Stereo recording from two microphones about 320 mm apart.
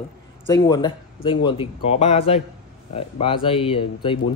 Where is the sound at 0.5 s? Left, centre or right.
Centre.